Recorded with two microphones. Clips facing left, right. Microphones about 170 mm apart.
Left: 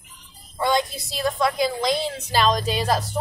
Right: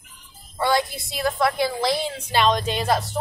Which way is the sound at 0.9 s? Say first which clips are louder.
Even; centre (ahead or behind).